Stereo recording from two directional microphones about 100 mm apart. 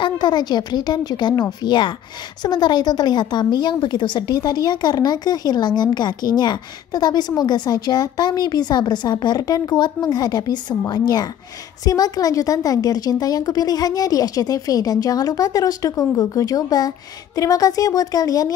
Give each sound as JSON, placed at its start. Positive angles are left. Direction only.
{"t": 0.0, "sound": "a woman's voice", "side_deg": 45}